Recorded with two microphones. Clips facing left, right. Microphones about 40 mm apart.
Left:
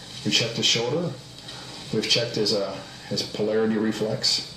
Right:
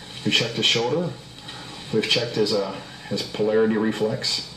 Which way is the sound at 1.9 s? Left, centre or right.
Right.